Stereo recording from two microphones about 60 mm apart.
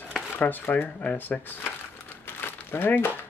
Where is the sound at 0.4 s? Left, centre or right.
Left.